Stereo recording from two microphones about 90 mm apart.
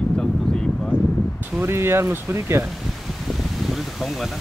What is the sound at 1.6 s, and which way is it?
Speech, 25° right (ahead or behind).